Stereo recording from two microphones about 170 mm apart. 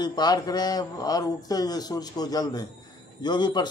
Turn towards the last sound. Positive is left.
turn(degrees=25)  # may be behind; listen again after turning